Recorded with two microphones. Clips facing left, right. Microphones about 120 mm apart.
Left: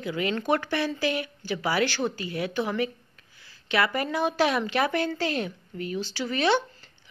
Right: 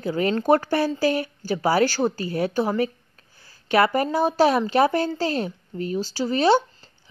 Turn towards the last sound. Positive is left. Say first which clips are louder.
# right 5 dB
turn(degrees=-35)  # may be behind; listen again after turning